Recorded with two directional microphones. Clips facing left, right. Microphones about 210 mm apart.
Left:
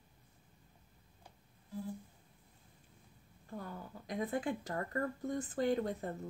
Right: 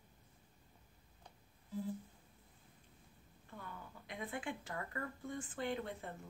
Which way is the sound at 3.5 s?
40° left (ahead or behind).